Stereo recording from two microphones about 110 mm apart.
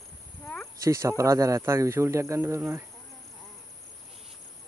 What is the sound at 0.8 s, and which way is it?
Speech, 30° right (ahead or behind).